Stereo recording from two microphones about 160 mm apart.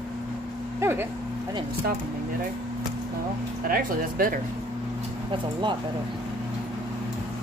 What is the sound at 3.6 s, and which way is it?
Speech, 65° right (ahead or behind).